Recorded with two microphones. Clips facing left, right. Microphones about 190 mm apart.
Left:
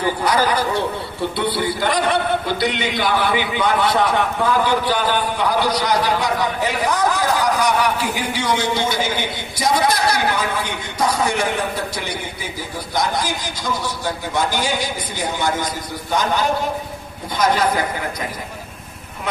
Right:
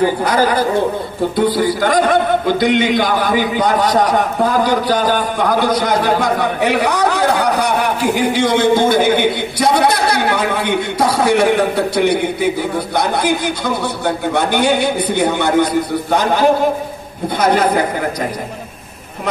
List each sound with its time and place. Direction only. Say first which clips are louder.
0.2 s a man's voice: right 4 dB; 50° right (ahead or behind)
16.2 s a man's voice: right 3 dB; 45° right (ahead or behind)
17.6 s a woman's voice: right 5 dB; 35° right (ahead or behind)